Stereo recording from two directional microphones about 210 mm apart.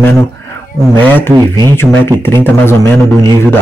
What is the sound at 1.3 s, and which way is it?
Speech, 20° right (ahead or behind).